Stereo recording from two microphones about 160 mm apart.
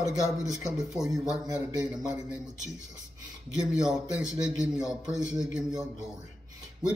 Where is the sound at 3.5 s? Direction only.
5° right (ahead or behind).